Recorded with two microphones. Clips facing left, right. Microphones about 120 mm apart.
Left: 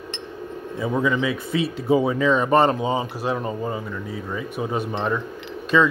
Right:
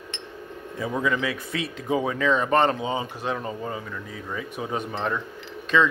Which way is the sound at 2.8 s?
40° left (ahead or behind).